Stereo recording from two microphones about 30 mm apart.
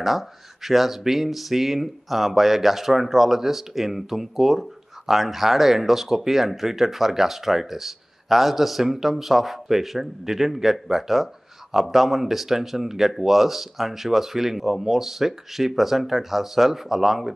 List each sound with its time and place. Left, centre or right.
0.0 s speech: centre